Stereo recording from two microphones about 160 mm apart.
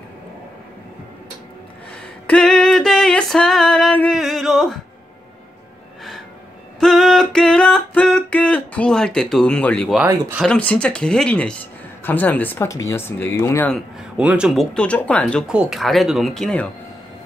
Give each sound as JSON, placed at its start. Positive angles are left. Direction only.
{"t": 2.2, "sound": "music", "side_deg": 5}
{"t": 4.2, "sound": "a sound", "side_deg": 0}
{"t": 6.8, "sound": "a sound", "side_deg": 5}
{"t": 10.0, "sound": "speech", "side_deg": -20}
{"t": 10.4, "sound": "speech", "side_deg": 5}
{"t": 14.1, "sound": "speech", "side_deg": -5}
{"t": 15.4, "sound": "speech", "side_deg": -5}